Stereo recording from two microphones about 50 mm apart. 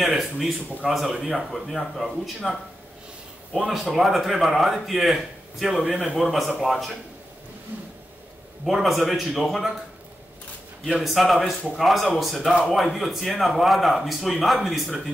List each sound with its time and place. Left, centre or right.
0.0 s speech: centre
5.9 s a man's voice: centre
6.2 s a man's voice: centre
7.7 s a sound: right
8.6 s speech: centre
11.0 s speech: centre